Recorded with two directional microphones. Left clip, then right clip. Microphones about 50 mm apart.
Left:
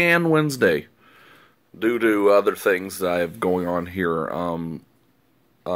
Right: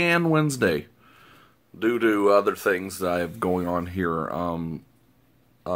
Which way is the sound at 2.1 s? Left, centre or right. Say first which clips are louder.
Left 3 dB; left.